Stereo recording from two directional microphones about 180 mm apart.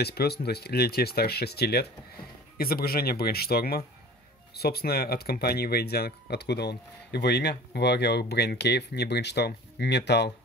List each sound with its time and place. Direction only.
0.0 s speech: 60° left (ahead or behind)